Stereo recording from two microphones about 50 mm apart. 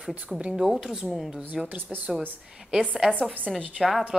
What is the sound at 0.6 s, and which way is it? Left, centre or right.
Speech, centre.